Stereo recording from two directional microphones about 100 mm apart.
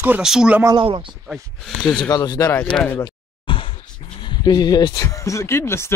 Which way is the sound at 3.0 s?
55° left (ahead or behind).